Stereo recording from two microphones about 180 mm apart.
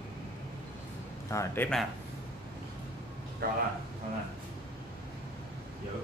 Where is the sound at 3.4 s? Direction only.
60° right (ahead or behind).